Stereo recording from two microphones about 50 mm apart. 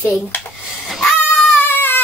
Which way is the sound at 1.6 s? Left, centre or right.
Left.